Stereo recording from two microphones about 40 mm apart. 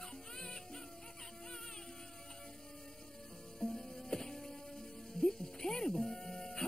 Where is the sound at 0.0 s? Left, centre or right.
Centre.